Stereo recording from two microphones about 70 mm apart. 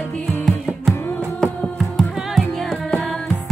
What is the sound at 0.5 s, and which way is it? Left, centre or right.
Music, centre.